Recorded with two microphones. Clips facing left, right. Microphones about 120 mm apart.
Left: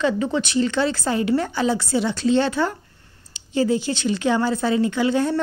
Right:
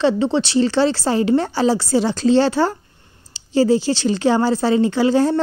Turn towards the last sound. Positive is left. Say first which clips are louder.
# right 4 dB
turn(degrees=-30)  # may be behind; listen again after turning